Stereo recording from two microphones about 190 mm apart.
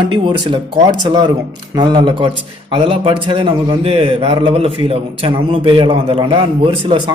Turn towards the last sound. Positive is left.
turn(degrees=-25)  # may be behind; listen again after turning